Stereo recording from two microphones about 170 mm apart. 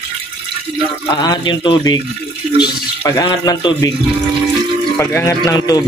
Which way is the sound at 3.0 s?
20° left (ahead or behind).